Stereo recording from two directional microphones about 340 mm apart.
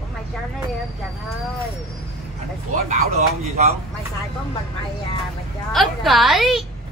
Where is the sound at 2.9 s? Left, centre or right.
Centre.